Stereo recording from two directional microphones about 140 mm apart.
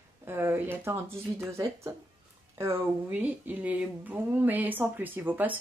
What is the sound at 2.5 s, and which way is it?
Speech, 15° right (ahead or behind).